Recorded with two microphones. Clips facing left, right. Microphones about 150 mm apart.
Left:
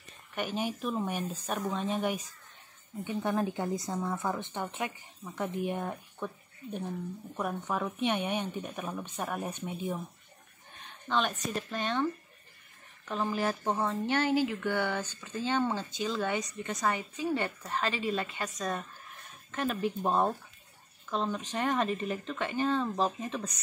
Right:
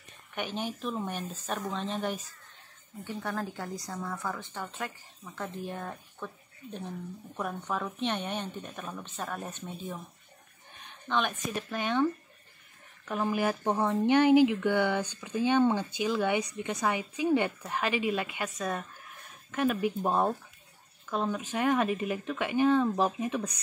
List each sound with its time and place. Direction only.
0.3 s speech: 5° left (ahead or behind)
11.1 s speech: centre (ahead or behind)
13.1 s speech: 10° right (ahead or behind)